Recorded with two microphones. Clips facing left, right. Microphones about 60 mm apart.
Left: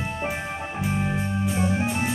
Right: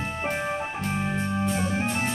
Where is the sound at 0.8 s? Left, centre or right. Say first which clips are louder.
Left 4 dB; centre.